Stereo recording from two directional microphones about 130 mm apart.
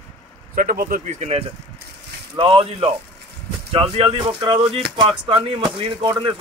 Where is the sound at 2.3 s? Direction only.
45° right (ahead or behind).